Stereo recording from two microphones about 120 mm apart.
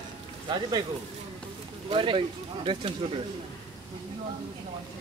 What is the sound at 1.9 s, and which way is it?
Speech, 45° right (ahead or behind).